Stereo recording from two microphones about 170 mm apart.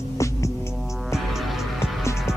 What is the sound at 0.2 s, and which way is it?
Music, 15° left (ahead or behind).